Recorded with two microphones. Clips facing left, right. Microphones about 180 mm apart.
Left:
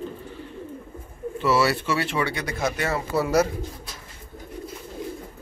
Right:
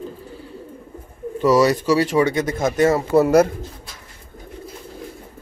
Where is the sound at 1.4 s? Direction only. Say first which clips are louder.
Right 7 dB; 40° right (ahead or behind).